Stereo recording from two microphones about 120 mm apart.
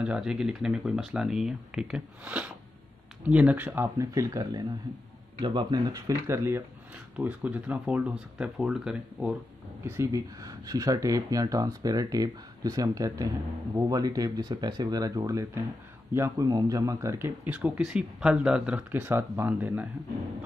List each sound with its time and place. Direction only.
0.0 s speech: 5° right (ahead or behind)
4.0 s speech: 25° right (ahead or behind)
5.4 s speech: 40° right (ahead or behind); by 9.3 s 5° right (ahead or behind)
9.8 s speech: 25° right (ahead or behind)
17.5 s speech: 10° right (ahead or behind)